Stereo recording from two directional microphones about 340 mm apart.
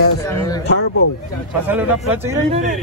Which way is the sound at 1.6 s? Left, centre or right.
Centre.